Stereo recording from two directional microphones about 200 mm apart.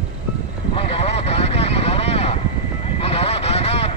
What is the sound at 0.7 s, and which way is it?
Vehicle, 30° left (ahead or behind).